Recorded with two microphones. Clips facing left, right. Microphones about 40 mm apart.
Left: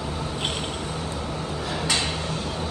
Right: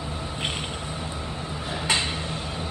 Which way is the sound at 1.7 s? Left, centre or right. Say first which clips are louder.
Right 1 dB; right.